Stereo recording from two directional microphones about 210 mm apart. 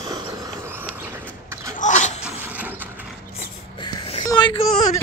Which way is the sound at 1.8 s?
35° left (ahead or behind).